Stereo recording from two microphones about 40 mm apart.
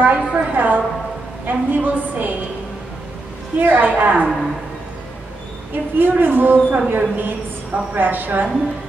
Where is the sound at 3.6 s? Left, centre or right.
Right.